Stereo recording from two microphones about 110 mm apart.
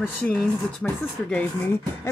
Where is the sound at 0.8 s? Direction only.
10° left (ahead or behind).